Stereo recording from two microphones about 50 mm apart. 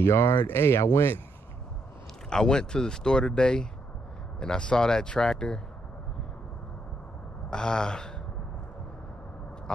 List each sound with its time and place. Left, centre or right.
0.0 s speech: left
2.2 s speech: centre
7.4 s speech: centre